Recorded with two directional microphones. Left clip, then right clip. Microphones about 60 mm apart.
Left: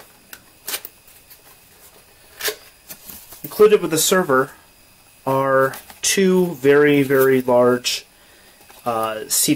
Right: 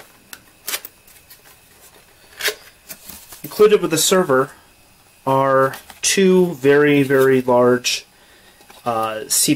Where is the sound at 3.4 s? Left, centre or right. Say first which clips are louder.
Even; right.